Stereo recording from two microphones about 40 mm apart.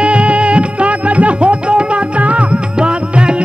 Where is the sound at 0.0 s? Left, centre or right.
Right.